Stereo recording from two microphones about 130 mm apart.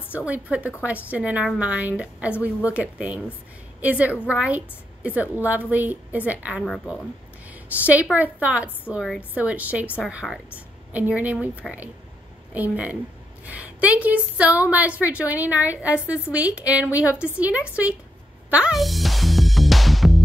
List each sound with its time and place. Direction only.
0.1 s a woman's voice: 10° right (ahead or behind)
7.8 s a woman's voice: 10° right (ahead or behind)
8.9 s a woman's voice: centre (ahead or behind)
9.3 s a woman's voice: 10° right (ahead or behind)
12.5 s a woman's voice: 10° right (ahead or behind)
18.5 s music: 5° right (ahead or behind)